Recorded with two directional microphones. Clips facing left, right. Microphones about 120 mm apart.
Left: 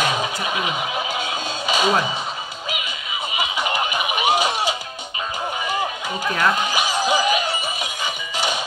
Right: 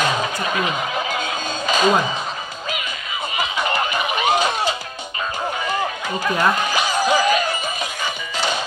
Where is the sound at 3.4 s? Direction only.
15° left (ahead or behind).